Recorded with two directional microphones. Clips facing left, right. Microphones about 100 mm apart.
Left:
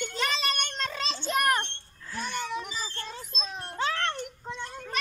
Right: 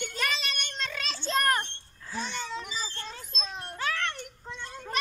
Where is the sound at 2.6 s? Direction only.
45° left (ahead or behind).